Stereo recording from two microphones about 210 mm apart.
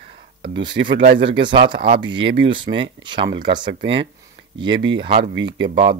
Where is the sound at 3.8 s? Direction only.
55° right (ahead or behind).